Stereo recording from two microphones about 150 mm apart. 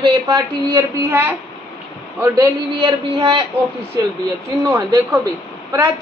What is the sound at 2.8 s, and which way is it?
Speech, 35° right (ahead or behind).